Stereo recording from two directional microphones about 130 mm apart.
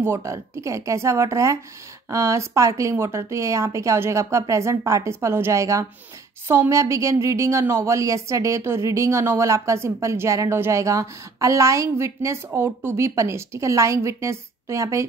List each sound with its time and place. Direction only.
0.0 s a woman's voice: 20° right (ahead or behind)